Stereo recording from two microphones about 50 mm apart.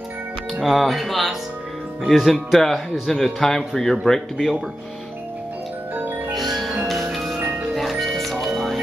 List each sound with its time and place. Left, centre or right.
0.6 s a man's voice: centre
5.9 s music: right
6.3 s music: centre